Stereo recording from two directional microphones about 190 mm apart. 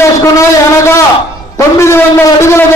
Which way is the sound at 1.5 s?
15° left (ahead or behind).